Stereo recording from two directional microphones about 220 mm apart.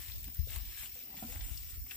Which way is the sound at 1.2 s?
20° left (ahead or behind).